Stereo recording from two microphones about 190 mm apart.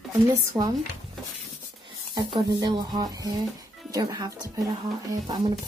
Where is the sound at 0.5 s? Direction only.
15° right (ahead or behind).